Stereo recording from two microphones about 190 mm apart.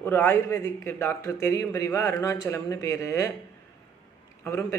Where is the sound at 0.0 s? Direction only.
10° left (ahead or behind).